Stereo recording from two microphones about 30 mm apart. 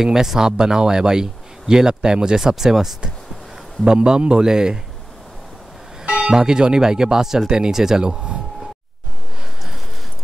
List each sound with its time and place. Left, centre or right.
0.0 s speech: centre
2.4 s speech: centre
3.8 s speech: right
6.1 s speech: right